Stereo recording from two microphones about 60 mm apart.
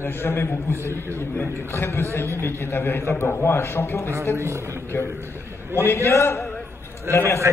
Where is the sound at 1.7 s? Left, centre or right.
Left.